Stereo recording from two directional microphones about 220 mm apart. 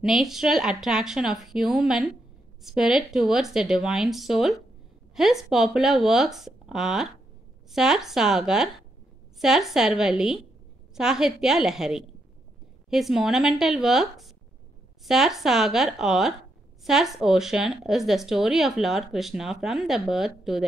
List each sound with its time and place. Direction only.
0.0 s speech: centre (ahead or behind)